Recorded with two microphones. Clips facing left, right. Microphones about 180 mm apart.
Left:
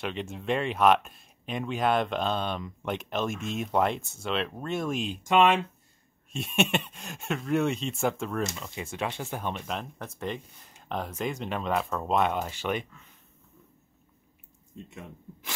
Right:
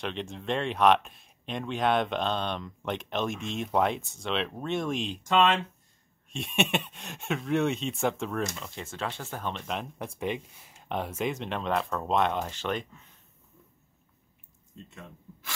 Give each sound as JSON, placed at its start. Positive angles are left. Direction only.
{"t": 0.0, "sound": "speech", "side_deg": 5}
{"t": 8.6, "sound": "speech", "side_deg": 15}
{"t": 9.9, "sound": "speech", "side_deg": -10}
{"t": 14.9, "sound": "speech", "side_deg": 15}